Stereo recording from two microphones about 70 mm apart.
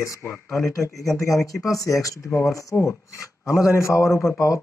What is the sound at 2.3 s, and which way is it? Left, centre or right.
Speech, left.